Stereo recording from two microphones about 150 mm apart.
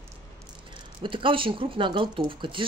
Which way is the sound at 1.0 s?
35° right (ahead or behind).